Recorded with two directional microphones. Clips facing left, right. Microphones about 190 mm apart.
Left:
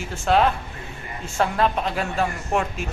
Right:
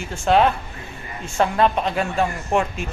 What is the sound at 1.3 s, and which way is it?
A woman's voice, centre (ahead or behind).